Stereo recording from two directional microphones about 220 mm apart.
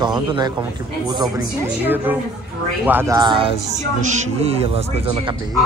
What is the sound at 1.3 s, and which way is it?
A woman's voice, 10° right (ahead or behind).